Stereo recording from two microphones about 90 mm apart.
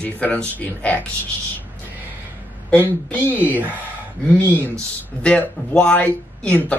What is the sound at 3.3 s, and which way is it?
Speech, 20° right (ahead or behind).